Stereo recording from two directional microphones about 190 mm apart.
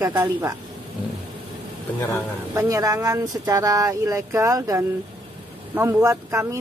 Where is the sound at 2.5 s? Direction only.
15° right (ahead or behind).